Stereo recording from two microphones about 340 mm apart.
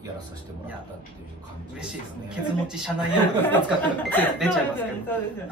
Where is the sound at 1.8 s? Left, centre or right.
Centre.